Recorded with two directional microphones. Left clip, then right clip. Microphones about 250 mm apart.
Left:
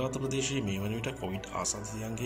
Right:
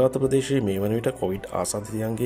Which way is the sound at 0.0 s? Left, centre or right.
Right.